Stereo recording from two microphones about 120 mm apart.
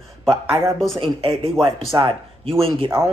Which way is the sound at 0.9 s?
50° right (ahead or behind).